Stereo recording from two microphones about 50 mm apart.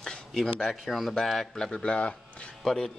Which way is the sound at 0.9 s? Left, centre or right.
Centre.